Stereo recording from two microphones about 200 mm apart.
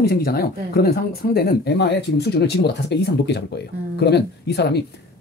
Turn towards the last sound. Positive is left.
turn(degrees=55)  # may be behind; listen again after turning